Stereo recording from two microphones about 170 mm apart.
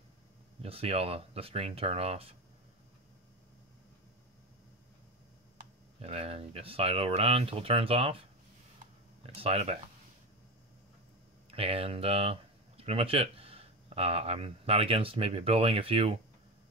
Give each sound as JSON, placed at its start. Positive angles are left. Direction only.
{"t": 0.6, "sound": "speech", "side_deg": -35}
{"t": 5.9, "sound": "speech", "side_deg": -35}
{"t": 9.2, "sound": "speech", "side_deg": -35}
{"t": 11.5, "sound": "speech", "side_deg": -35}